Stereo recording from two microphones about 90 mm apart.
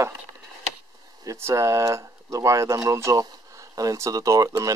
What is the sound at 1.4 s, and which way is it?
Speech, 30° right (ahead or behind).